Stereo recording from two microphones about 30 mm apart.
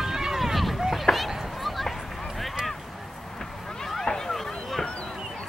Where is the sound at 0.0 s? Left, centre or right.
Centre.